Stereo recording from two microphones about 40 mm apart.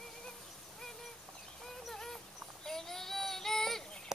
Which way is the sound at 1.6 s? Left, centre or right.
Centre.